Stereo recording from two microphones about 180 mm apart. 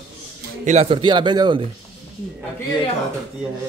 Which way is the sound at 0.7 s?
35° right (ahead or behind).